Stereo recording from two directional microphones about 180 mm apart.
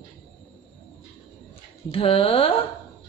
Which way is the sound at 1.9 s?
30° left (ahead or behind).